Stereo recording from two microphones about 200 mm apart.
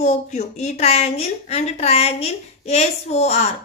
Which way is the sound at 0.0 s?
35° left (ahead or behind).